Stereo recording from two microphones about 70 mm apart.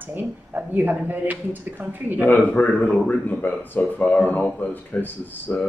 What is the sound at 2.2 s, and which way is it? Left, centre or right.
Speech, left.